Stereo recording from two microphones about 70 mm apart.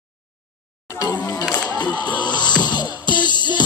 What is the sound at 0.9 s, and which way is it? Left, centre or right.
Music, left.